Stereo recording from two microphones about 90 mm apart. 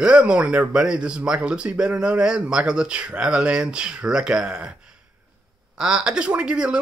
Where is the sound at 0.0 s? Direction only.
10° right (ahead or behind).